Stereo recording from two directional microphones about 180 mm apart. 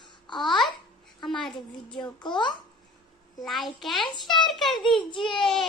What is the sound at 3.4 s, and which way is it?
Speech, centre (ahead or behind).